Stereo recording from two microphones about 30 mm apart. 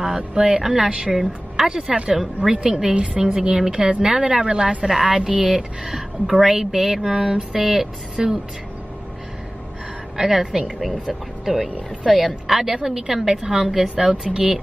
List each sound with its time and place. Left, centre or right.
0.0 s speech: right
0.6 s a woman's voice: centre
1.7 s speech: right
2.5 s a woman's voice: right
5.9 s a woman's voice: centre
10.1 s a woman's voice: centre
10.4 s a woman's voice: right
11.4 s a woman's voice: centre
12.7 s a woman's voice: centre
13.4 s a woman's voice: right